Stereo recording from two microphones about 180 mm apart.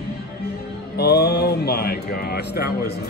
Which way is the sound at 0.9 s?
60° left (ahead or behind).